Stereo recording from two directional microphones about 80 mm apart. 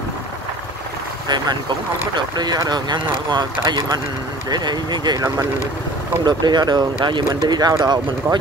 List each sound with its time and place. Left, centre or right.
2.1 s speech: right